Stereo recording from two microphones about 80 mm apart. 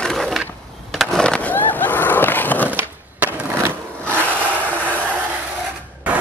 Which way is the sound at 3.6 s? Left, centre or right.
Right.